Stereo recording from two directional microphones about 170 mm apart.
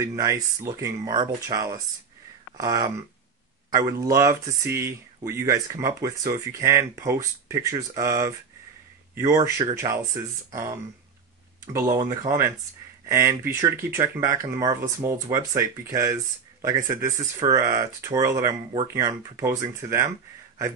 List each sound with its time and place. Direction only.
0.0 s speech: 20° right (ahead or behind)